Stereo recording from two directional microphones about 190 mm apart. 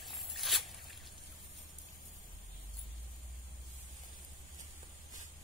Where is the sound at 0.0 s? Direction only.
Centre (ahead or behind).